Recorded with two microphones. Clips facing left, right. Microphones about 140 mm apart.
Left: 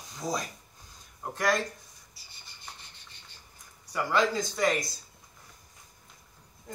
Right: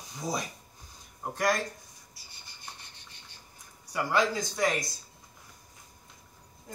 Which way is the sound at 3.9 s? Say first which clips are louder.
Left 1 dB; 5° right (ahead or behind).